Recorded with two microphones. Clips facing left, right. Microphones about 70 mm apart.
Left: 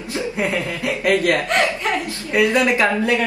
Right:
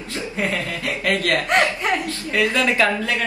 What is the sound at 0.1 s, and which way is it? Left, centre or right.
A man's voice, left.